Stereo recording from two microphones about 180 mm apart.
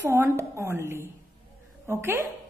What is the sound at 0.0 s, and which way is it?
A woman's voice, 15° right (ahead or behind).